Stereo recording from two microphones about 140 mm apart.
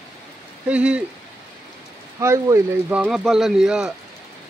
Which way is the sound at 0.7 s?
10° right (ahead or behind).